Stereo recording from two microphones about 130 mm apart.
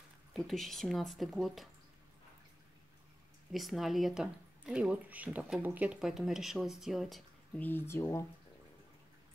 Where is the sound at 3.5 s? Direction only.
Centre (ahead or behind).